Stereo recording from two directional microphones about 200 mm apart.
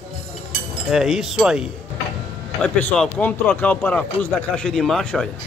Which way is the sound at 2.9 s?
5° left (ahead or behind).